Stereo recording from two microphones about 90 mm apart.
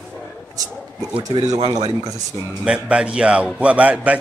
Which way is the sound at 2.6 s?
10° right (ahead or behind).